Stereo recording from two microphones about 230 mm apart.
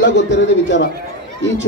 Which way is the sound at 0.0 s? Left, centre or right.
Left.